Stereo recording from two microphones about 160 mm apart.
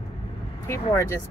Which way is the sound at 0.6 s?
15° left (ahead or behind).